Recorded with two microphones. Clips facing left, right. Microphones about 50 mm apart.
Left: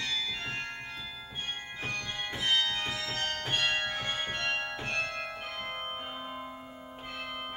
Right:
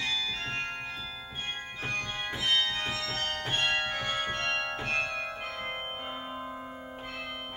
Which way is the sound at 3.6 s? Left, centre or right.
Centre.